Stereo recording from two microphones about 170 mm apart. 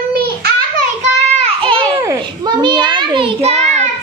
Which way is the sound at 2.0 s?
20° right (ahead or behind).